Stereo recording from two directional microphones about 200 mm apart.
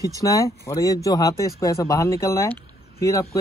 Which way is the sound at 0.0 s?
15° left (ahead or behind).